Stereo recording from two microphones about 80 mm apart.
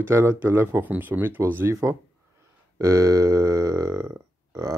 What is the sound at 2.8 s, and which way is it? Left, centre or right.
Burping, right.